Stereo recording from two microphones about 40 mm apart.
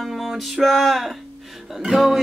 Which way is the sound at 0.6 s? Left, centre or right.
Centre.